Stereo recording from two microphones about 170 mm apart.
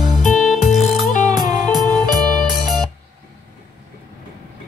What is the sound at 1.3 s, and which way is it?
Music, 25° right (ahead or behind).